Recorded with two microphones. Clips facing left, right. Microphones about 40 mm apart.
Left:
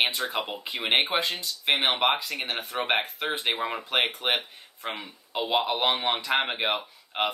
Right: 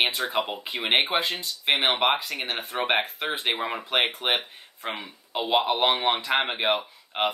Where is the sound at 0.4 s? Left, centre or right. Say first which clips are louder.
Right 4 dB; centre.